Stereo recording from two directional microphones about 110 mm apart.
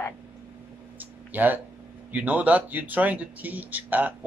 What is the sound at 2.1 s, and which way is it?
Speech, 15° right (ahead or behind).